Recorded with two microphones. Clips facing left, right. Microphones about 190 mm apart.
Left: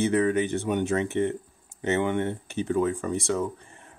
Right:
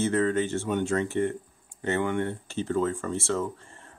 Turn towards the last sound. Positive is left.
turn(degrees=15)  # may be behind; listen again after turning